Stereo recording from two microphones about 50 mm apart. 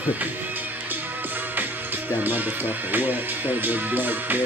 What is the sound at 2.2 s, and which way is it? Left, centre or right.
Music, right.